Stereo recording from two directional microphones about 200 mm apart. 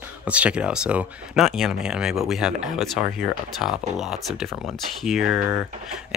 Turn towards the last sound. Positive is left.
turn(degrees=-5)  # may be behind; listen again after turning